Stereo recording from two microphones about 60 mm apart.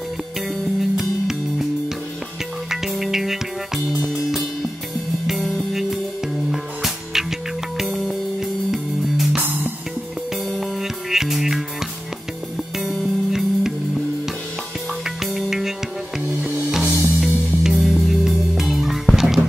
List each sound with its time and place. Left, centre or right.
0.7 s music: centre
2.7 s music: centre
10.5 s music: centre
12.7 s music: centre
15.0 s music: centre
16.8 s music: right
17.2 s music: centre